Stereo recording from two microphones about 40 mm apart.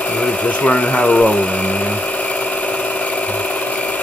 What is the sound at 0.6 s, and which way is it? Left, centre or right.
Speech, left.